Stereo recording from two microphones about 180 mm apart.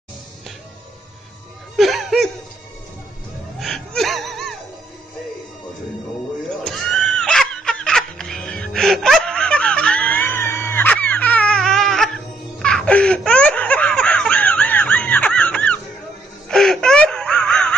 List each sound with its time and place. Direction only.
1.8 s laughter: centre (ahead or behind)
3.5 s music: centre (ahead or behind)
6.5 s snicker: centre (ahead or behind)
12.5 s laughter: 5° left (ahead or behind)